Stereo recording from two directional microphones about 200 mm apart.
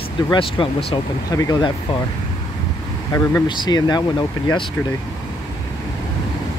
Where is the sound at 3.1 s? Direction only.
20° left (ahead or behind).